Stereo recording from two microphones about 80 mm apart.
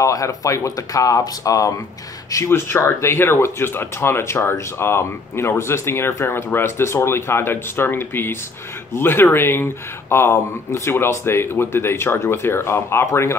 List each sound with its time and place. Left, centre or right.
0.0 s speech: left
2.3 s speech: left